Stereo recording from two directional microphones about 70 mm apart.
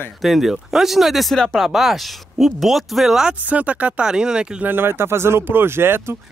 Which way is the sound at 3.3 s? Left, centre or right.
Right.